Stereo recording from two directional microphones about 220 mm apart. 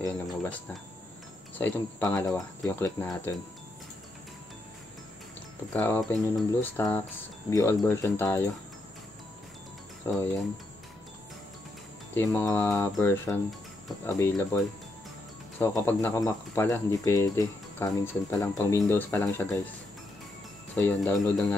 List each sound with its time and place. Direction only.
0.3 s speech: 5° left (ahead or behind)
1.6 s speech: 10° left (ahead or behind)
5.7 s speech: 10° left (ahead or behind)
10.1 s speech: 15° left (ahead or behind)
12.1 s speech: 10° left (ahead or behind)
15.6 s speech: 10° left (ahead or behind)
20.7 s speech: 5° left (ahead or behind)